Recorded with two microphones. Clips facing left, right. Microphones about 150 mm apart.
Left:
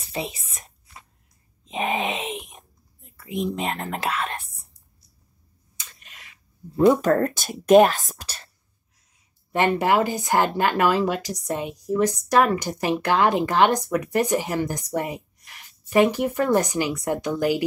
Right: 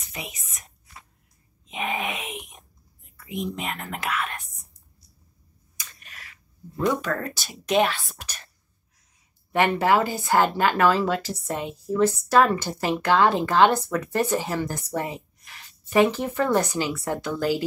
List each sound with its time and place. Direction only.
0.0 s whispering: 30° left (ahead or behind)
1.7 s dog: 25° left (ahead or behind)
3.3 s speech: 30° left (ahead or behind)
5.8 s a sound: 20° left (ahead or behind)
7.0 s a woman's voice: 45° left (ahead or behind)
9.6 s speech: 15° left (ahead or behind)